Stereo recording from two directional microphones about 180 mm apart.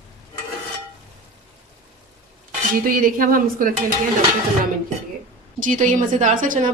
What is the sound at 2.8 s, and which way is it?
Speech, 50° right (ahead or behind).